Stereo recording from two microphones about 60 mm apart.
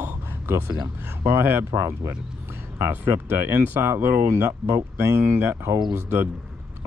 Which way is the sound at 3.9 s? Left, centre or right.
Right.